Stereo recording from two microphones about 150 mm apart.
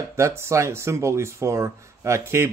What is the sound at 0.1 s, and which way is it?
Speech, 15° right (ahead or behind).